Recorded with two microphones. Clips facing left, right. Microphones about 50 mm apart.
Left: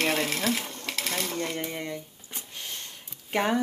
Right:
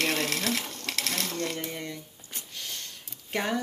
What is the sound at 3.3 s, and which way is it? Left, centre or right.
Speech, centre.